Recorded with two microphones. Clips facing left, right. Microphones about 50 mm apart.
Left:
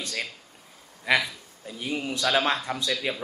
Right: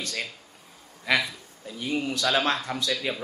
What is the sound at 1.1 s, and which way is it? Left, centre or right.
A man's voice, centre.